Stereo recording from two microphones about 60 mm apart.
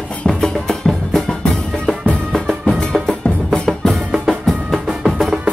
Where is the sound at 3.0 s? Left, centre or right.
Centre.